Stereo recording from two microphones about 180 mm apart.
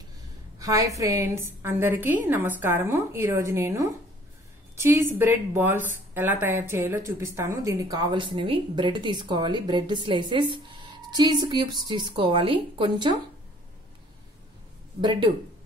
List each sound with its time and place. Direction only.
0.6 s a woman's voice: 20° right (ahead or behind)
15.0 s a woman's voice: 25° right (ahead or behind)